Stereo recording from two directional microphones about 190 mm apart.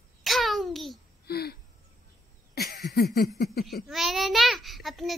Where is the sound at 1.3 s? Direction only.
55° left (ahead or behind).